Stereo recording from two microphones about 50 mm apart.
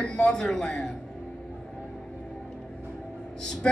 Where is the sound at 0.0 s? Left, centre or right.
Centre.